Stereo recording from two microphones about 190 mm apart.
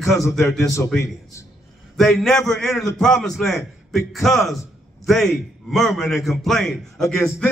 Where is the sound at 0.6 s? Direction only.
15° left (ahead or behind).